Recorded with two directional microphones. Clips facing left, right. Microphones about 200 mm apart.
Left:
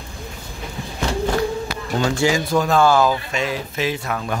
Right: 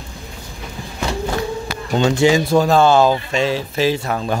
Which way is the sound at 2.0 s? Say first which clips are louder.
Right 5 dB; 25° right (ahead or behind).